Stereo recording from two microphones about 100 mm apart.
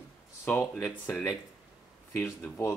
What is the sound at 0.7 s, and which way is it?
Speech, 20° left (ahead or behind).